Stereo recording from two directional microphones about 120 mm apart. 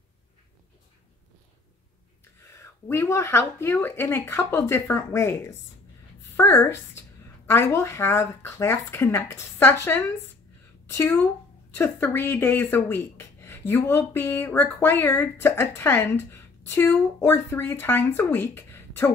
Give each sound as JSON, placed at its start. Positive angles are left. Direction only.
{"t": 2.5, "sound": "speech", "side_deg": 20}